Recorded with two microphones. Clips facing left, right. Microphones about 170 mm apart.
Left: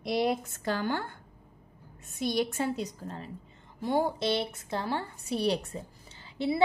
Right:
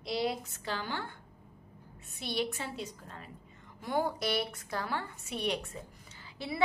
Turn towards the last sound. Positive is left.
turn(degrees=25)  # may be behind; listen again after turning